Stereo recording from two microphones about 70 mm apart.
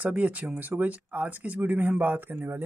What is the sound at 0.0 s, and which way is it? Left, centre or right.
Speech, right.